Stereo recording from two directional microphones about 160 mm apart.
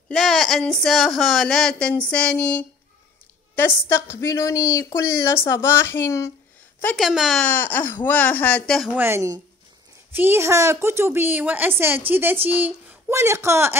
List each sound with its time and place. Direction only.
0.1 s a woman's voice: centre (ahead or behind); by 6.3 s 15° left (ahead or behind)
7.0 s speech: centre (ahead or behind)
7.4 s a woman's voice: 10° left (ahead or behind)
8.9 s a woman's voice: 15° right (ahead or behind)